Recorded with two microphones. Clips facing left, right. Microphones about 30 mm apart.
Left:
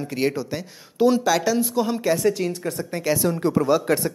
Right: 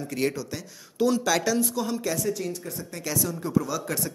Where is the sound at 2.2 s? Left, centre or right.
Left.